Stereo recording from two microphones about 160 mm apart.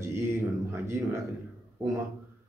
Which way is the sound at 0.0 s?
15° right (ahead or behind).